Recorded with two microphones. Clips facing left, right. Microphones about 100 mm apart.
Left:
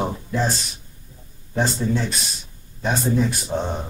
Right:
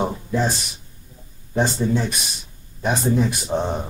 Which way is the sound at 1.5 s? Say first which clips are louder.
Right 2 dB; 15° right (ahead or behind).